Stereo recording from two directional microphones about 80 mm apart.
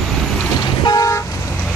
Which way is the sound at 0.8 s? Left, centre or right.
Left.